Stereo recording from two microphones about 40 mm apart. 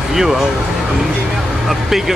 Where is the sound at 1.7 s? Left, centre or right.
Centre.